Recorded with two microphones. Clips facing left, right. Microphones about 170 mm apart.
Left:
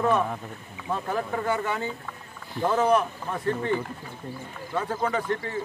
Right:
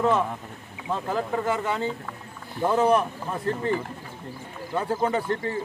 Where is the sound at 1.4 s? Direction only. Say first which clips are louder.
Right 1 dB; 30° right (ahead or behind).